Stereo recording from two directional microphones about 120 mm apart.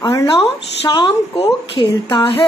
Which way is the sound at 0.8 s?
45° left (ahead or behind).